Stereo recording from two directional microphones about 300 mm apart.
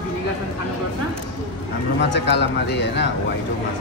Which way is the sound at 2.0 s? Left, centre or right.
Left.